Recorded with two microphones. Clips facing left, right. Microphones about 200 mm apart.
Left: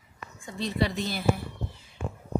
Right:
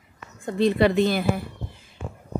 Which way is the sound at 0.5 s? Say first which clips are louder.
Right 9 dB; 60° right (ahead or behind).